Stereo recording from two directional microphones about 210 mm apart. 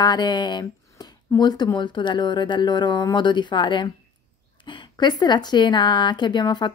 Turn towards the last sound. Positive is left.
turn(degrees=20)  # may be behind; listen again after turning